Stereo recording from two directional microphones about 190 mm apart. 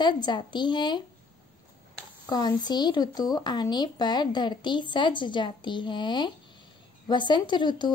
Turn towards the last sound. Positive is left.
turn(degrees=25)  # may be behind; listen again after turning